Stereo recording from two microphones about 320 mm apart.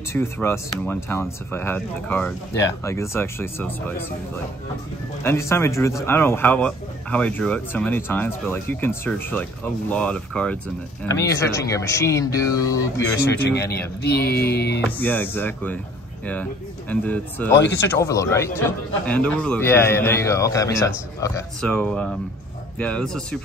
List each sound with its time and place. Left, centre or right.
0.1 s a man's voice: centre
5.2 s a man's voice: centre
13.5 s speech: left
14.9 s speech: centre
16.9 s a man's voice: centre